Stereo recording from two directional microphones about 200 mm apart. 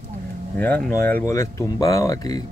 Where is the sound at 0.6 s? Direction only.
10° left (ahead or behind).